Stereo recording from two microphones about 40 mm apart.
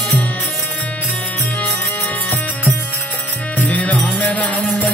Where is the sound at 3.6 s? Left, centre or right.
Left.